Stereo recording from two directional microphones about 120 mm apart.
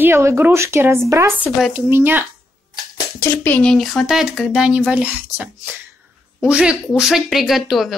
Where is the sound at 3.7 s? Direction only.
Centre (ahead or behind).